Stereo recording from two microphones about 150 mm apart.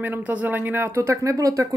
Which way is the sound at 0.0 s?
10° right (ahead or behind).